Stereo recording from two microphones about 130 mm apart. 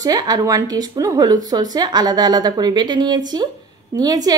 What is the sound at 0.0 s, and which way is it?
A woman's voice, 30° right (ahead or behind).